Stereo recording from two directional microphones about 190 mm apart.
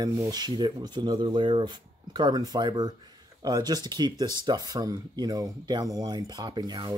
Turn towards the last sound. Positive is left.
turn(degrees=-20)  # may be behind; listen again after turning